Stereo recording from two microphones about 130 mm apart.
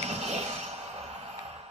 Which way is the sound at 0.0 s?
55° right (ahead or behind).